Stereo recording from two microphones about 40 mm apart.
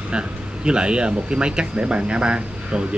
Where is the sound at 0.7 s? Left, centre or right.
Right.